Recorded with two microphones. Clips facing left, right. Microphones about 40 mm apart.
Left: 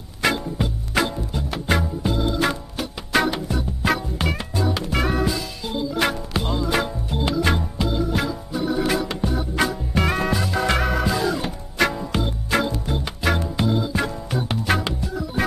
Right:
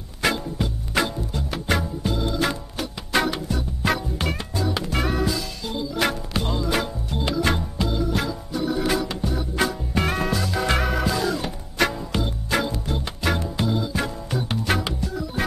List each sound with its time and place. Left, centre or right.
0.2 s music: centre
9.7 s music: centre
15.0 s organ: centre